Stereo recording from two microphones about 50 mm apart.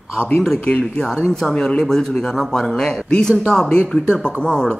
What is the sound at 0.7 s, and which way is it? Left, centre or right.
Speech, left.